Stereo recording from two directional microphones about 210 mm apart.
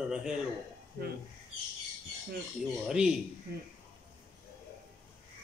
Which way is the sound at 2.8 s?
5° right (ahead or behind).